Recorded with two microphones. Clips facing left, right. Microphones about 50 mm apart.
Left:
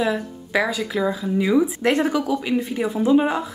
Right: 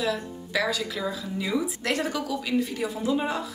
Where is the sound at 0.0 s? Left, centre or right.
Left.